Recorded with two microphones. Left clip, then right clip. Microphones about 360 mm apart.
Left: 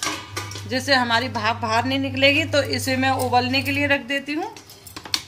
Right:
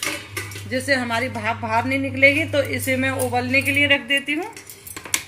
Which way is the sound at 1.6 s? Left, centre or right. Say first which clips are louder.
Even; left.